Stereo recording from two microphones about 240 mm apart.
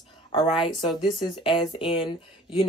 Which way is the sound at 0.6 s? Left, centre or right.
Centre.